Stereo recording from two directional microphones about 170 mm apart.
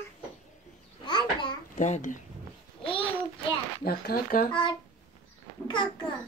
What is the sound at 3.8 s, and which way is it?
Speech, 65° left (ahead or behind).